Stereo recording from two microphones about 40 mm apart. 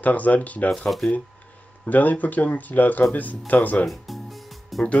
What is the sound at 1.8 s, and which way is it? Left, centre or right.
Speech, left.